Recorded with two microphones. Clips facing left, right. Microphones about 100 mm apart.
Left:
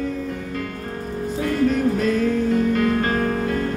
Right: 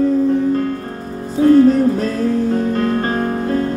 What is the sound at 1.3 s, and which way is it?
Music, 35° right (ahead or behind).